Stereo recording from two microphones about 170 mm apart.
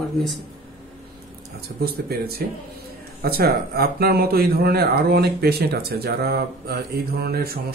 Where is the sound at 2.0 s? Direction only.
65° right (ahead or behind).